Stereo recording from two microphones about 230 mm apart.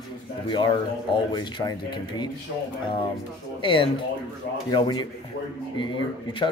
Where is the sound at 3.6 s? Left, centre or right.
Left.